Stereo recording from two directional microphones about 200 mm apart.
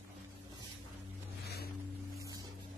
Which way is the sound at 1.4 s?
50° left (ahead or behind).